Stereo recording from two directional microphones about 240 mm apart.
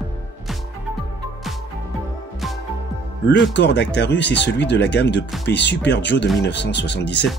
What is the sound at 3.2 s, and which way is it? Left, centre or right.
Speech, left.